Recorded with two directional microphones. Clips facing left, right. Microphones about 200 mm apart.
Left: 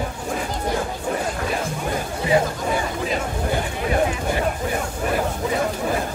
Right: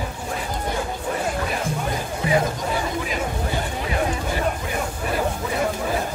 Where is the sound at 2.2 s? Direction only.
25° left (ahead or behind).